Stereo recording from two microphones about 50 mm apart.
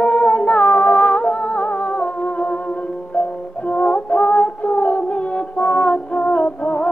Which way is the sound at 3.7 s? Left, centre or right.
Left.